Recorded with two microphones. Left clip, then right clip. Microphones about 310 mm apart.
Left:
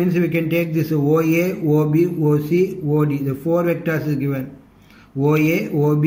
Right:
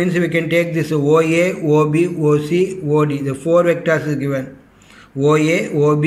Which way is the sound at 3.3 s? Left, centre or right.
Right.